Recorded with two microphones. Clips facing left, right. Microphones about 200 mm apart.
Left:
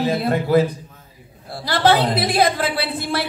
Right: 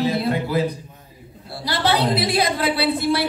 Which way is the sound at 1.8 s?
50° left (ahead or behind).